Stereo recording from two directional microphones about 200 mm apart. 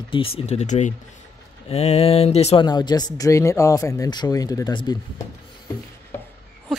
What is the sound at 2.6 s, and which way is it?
Speech, 20° left (ahead or behind).